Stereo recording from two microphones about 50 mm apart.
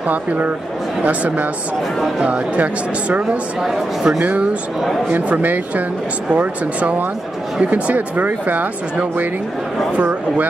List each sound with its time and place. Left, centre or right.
0.1 s speech: right
3.6 s speech: centre
4.2 s speech: right